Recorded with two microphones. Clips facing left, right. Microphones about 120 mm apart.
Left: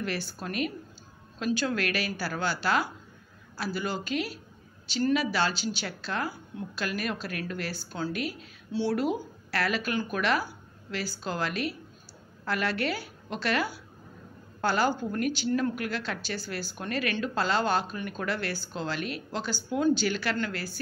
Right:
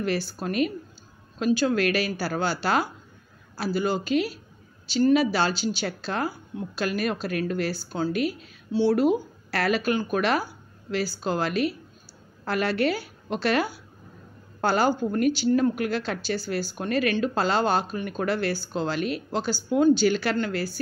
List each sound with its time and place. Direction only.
0.0 s a woman's voice: 30° right (ahead or behind)